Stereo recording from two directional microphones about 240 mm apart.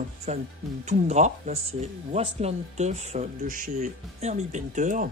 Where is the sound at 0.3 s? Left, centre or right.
Right.